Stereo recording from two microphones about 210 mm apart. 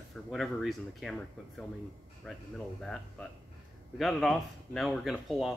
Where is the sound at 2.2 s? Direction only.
Centre (ahead or behind).